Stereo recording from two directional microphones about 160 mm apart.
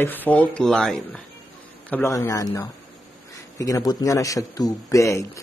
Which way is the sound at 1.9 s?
15° left (ahead or behind).